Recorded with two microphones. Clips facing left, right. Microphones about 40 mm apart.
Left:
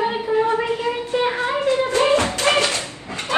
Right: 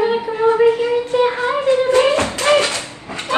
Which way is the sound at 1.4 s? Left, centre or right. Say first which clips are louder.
Right 4 dB; right.